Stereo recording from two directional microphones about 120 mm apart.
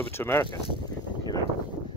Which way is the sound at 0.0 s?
20° left (ahead or behind).